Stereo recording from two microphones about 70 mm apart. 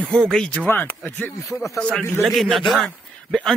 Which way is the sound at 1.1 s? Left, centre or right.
Left.